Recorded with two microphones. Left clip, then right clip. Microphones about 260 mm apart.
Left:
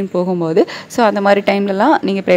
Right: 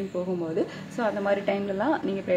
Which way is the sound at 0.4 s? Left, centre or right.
Left.